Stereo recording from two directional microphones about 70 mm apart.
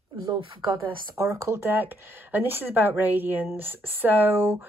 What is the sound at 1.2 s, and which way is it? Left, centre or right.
Speech, right.